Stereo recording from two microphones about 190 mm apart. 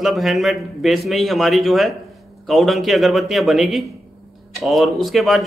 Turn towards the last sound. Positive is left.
turn(degrees=0)  # may be behind; listen again after turning